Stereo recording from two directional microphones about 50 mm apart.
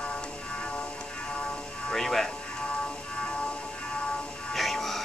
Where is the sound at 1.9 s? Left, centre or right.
Centre.